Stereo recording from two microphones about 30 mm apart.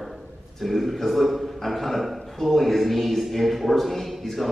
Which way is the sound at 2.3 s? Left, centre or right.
Centre.